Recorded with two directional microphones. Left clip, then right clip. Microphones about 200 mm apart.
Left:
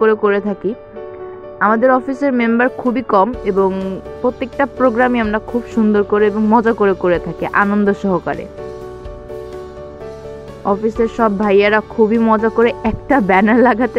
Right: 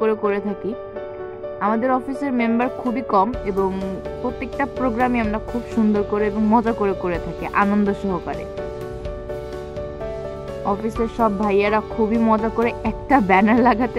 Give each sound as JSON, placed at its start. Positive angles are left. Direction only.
{"t": 0.0, "sound": "speech", "side_deg": 15}
{"t": 10.7, "sound": "speech", "side_deg": 15}